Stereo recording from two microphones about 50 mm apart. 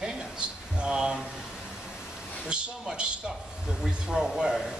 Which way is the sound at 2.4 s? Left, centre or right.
Centre.